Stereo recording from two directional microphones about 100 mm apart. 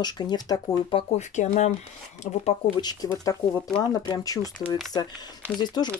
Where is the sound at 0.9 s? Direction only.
75° left (ahead or behind).